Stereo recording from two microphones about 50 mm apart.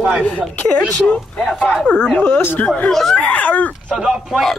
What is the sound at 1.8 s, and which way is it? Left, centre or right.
Speech, left.